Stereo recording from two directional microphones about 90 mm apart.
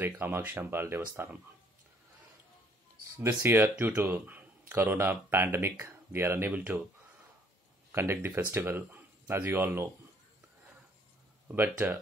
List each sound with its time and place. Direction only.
0.2 s speech: 20° right (ahead or behind)
3.2 s speech: 25° right (ahead or behind)
3.7 s speech: 15° right (ahead or behind)
7.9 s speech: 30° right (ahead or behind)
11.4 s speech: 25° right (ahead or behind)